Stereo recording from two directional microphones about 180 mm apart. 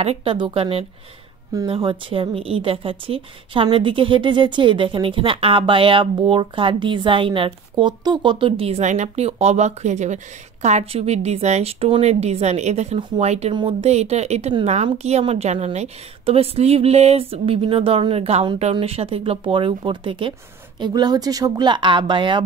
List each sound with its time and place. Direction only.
0.0 s a woman's voice: 30° right (ahead or behind)